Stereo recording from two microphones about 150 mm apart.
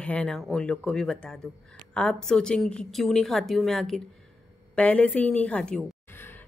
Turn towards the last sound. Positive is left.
turn(degrees=15)  # may be behind; listen again after turning